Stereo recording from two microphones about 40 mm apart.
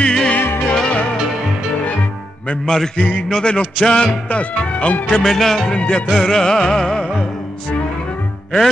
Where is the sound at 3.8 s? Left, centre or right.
Centre.